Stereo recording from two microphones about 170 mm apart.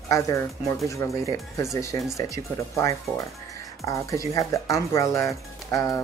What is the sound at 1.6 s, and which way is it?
Speech, 20° left (ahead or behind).